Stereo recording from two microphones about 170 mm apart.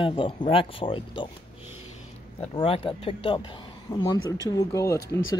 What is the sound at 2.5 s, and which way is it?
Speech, 30° left (ahead or behind).